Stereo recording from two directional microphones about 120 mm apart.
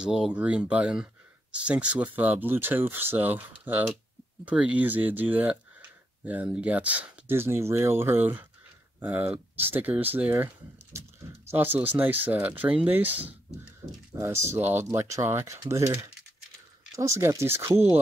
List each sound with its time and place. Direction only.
0.0 s speech: 5° right (ahead or behind)